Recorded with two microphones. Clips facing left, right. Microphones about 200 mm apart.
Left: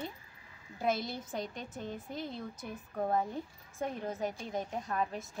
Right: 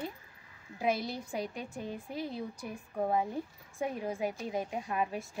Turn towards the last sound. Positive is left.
turn(degrees=-10)  # may be behind; listen again after turning